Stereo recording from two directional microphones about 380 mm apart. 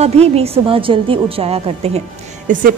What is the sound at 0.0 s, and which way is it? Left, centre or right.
A woman's voice, centre.